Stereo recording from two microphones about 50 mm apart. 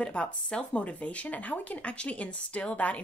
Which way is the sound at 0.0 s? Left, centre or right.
Left.